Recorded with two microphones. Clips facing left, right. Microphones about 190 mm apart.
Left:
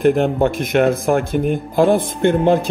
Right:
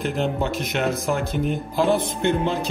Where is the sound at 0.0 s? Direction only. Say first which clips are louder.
Left 9 dB; 55° left (ahead or behind).